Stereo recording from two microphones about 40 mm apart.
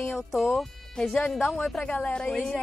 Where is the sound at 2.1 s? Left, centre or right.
Left.